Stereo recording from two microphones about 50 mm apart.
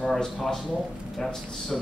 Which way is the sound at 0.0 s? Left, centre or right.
Centre.